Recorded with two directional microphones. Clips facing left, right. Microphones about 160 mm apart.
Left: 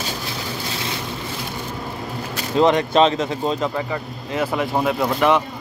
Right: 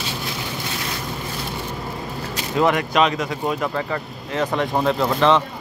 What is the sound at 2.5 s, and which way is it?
Speech, 25° left (ahead or behind).